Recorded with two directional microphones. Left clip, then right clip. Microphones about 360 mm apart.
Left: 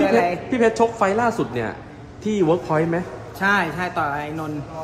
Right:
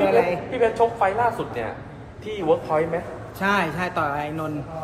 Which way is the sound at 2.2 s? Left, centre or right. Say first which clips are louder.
Left 2 dB; left.